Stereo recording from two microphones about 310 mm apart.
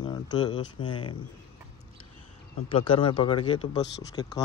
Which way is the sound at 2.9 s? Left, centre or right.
Centre.